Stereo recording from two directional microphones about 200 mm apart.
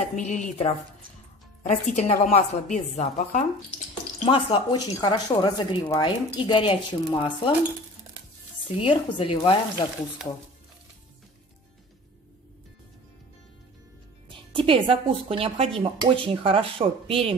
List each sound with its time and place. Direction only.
0.1 s a woman's voice: 40° left (ahead or behind)
8.8 s speech: 25° left (ahead or behind)
14.5 s speech: 25° right (ahead or behind)